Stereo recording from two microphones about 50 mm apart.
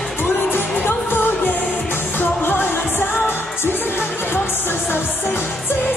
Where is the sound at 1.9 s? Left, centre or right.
Left.